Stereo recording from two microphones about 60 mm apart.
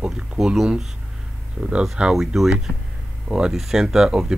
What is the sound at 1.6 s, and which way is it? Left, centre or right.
Speech, centre.